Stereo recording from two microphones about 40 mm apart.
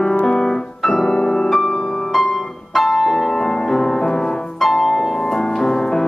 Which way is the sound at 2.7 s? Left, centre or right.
Centre.